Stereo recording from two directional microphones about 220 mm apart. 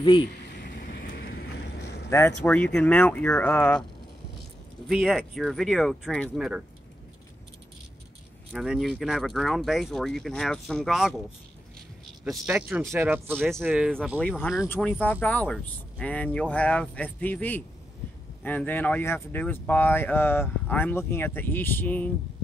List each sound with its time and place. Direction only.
0.6 s a sound: 45° left (ahead or behind)
2.0 s speech: 10° left (ahead or behind)
4.8 s speech: 5° right (ahead or behind)
8.5 s speech: centre (ahead or behind)
12.3 s speech: 5° right (ahead or behind)
13.5 s speech: centre (ahead or behind)